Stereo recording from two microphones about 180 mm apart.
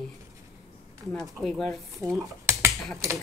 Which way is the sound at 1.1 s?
5° left (ahead or behind).